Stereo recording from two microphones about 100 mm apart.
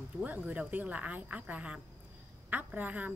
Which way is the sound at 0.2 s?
15° right (ahead or behind).